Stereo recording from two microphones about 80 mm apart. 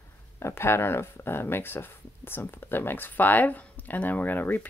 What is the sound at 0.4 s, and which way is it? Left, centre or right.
Speech, left.